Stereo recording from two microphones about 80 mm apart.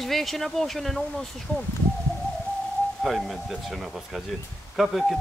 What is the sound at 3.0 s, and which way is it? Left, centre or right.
Speech, centre.